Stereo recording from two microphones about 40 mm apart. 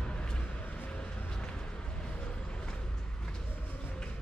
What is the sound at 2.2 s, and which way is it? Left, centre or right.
Vehicle, left.